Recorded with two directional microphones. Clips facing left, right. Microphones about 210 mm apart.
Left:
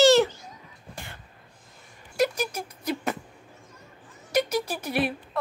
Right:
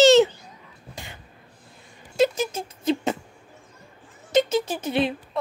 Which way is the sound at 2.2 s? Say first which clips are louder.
Right 4 dB; 25° right (ahead or behind).